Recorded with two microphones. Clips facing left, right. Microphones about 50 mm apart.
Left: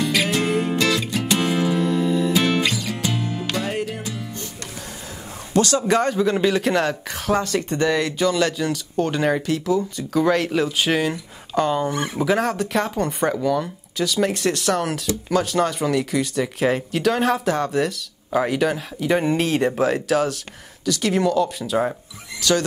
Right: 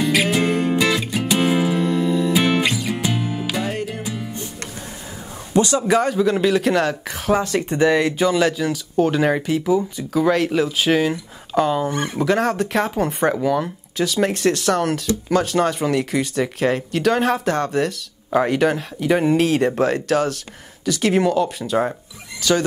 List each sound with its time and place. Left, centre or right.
0.0 s music: centre
2.3 s music: centre
5.5 s speech: centre
5.9 s speech: centre
20.8 s speech: centre
21.5 s speech: centre